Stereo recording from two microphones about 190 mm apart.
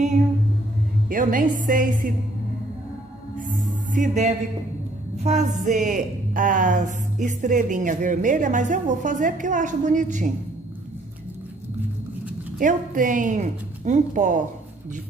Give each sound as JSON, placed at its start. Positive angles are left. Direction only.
{"t": 1.0, "sound": "a woman's voice", "side_deg": -45}
{"t": 3.3, "sound": "music", "side_deg": -45}
{"t": 5.7, "sound": "speech", "side_deg": -40}
{"t": 12.5, "sound": "speech", "side_deg": -45}